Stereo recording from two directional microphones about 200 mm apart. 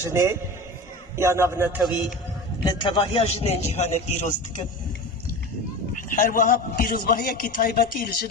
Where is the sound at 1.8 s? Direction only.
Centre (ahead or behind).